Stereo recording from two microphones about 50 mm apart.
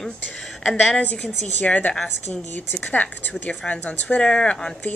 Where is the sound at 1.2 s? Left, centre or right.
Left.